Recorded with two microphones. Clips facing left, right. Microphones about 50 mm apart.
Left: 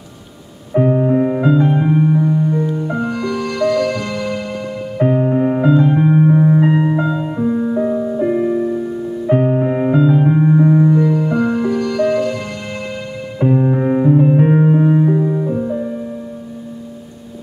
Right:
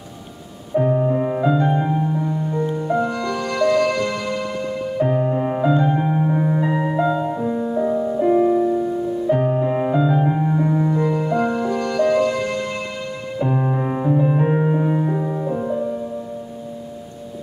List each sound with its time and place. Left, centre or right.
0.7 s music: left; by 4.0 s centre
5.0 s music: centre
6.8 s music: centre
9.3 s music: left
9.9 s music: centre
11.0 s music: centre
15.0 s music: centre